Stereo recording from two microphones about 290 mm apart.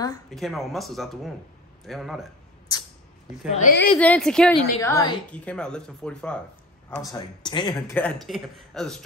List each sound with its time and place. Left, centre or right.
0.3 s a woman's voice: centre
3.5 s a woman's voice: left
4.0 s a woman's voice: centre